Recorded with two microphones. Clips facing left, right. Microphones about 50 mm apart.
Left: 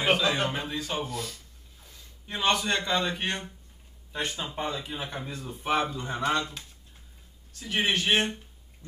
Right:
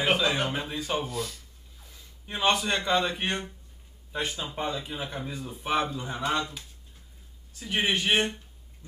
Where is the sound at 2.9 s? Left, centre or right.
Right.